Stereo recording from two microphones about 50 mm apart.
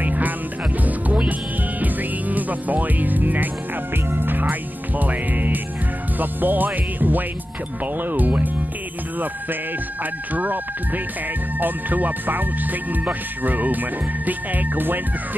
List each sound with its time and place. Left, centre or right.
0.0 s music: right
6.1 s speech: right
10.3 s speech: right